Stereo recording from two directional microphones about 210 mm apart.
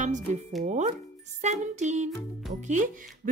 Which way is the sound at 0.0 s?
35° right (ahead or behind).